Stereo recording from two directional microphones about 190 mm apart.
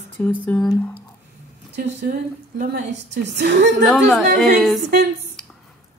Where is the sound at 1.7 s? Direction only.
55° right (ahead or behind).